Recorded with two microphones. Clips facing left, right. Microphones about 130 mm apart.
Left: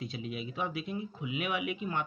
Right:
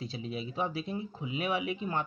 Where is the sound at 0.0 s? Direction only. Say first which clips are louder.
Right 1 dB; 30° right (ahead or behind).